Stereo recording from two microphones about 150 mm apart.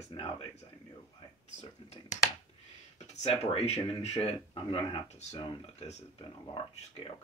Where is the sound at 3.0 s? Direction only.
45° left (ahead or behind).